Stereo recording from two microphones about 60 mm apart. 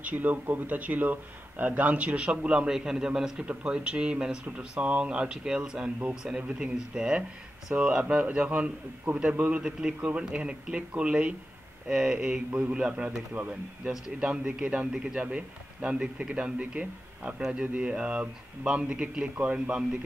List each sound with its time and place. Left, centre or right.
0.0 s a man's voice: right
9.6 s a man's voice: centre
11.9 s a man's voice: centre